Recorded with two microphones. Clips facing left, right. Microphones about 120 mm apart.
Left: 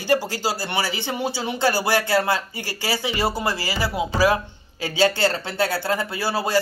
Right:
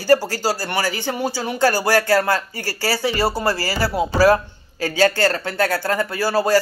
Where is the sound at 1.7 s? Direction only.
45° right (ahead or behind).